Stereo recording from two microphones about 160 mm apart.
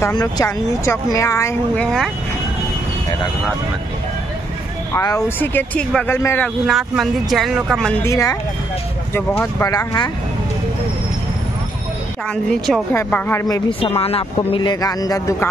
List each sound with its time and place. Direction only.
0.0 s speech: 25° left (ahead or behind)
1.8 s speech: centre (ahead or behind)
4.9 s speech: 20° left (ahead or behind)
6.6 s speech: centre (ahead or behind)
7.9 s speech: 20° left (ahead or behind)
9.4 s speech: 15° left (ahead or behind)
12.4 s speech: centre (ahead or behind)
12.9 s speech: 15° left (ahead or behind)
13.7 s speech: 35° left (ahead or behind)